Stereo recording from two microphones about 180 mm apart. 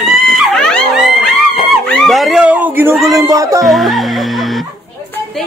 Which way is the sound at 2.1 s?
Centre (ahead or behind).